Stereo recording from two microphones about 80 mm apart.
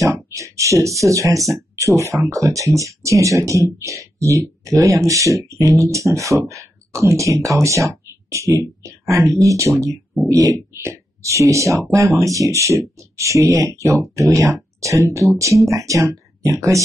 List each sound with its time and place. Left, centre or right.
0.0 s speech: right